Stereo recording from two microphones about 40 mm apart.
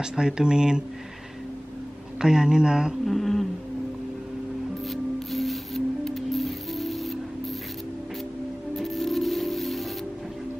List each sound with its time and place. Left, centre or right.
0.0 s speech: centre
2.1 s speech: centre
3.1 s humming: centre
4.8 s music: centre
8.7 s music: centre